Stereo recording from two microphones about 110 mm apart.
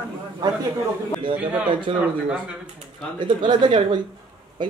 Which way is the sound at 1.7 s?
45° right (ahead or behind).